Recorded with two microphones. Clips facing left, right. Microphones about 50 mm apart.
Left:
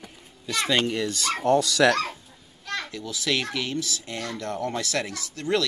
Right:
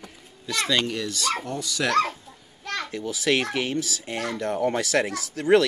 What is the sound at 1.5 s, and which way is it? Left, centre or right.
Speech, left.